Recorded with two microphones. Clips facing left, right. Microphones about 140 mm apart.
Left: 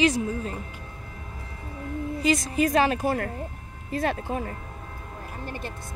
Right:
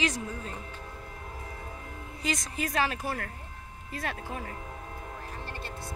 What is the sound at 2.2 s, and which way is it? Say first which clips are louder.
Speech: left 9 dB; 5° left (ahead or behind).